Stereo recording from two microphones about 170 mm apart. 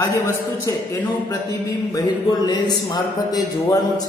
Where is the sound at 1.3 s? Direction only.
20° left (ahead or behind).